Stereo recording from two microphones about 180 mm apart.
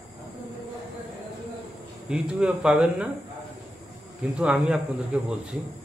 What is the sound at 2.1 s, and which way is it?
A man's voice, 5° right (ahead or behind).